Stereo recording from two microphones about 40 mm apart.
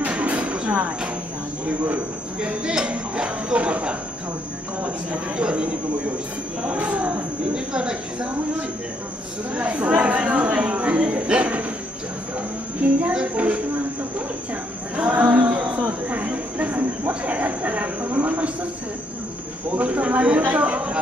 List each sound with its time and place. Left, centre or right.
0.0 s a sound: right
2.6 s a woman's voice: centre
5.3 s a woman's voice: right
7.5 s a woman's voice: right
12.8 s speech: right
15.1 s speech: right
15.5 s speech: right
16.5 s a sound: right
17.1 s speech: right
19.7 s speech: right